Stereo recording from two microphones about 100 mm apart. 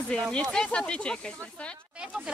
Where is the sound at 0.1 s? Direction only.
10° left (ahead or behind).